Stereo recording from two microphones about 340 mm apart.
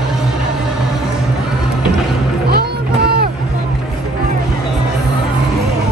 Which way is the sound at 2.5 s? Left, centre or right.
Right.